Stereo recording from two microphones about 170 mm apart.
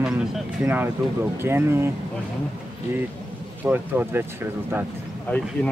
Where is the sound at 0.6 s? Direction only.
10° right (ahead or behind).